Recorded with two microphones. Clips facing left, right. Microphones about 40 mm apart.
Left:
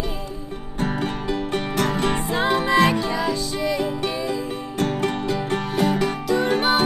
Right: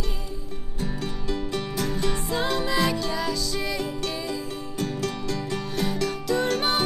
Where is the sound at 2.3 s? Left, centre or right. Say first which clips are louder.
Left 7 dB; left.